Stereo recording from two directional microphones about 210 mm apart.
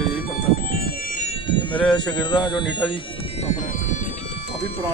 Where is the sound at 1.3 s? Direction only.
25° left (ahead or behind).